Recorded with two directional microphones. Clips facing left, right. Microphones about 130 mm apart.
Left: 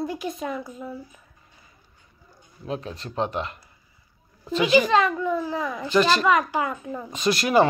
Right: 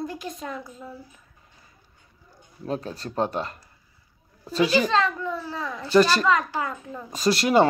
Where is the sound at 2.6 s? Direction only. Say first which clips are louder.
Right 2 dB; 35° right (ahead or behind).